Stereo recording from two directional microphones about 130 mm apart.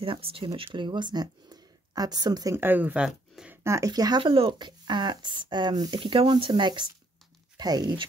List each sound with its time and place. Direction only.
0.0 s speech: 45° right (ahead or behind)
2.5 s speech: 15° right (ahead or behind)
3.6 s speech: 25° right (ahead or behind)